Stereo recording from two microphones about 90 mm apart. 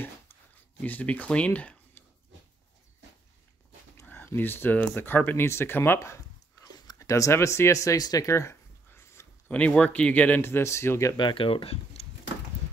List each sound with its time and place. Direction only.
0.7 s speech: 15° left (ahead or behind)
4.1 s speech: 25° left (ahead or behind)
9.5 s speech: 15° left (ahead or behind)
10.4 s speech: 30° left (ahead or behind)
11.1 s speech: 70° left (ahead or behind); by 12.1 s 90° left